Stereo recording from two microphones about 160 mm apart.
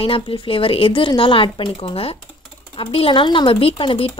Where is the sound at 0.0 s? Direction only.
35° left (ahead or behind).